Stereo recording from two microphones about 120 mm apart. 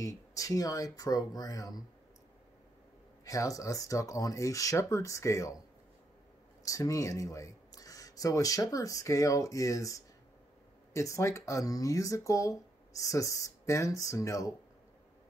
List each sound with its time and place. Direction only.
0.0 s speech: 30° left (ahead or behind)
3.3 s speech: 30° left (ahead or behind)
6.6 s speech: 30° left (ahead or behind)